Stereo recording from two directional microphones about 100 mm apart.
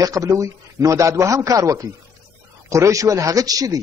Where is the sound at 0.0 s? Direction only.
35° right (ahead or behind).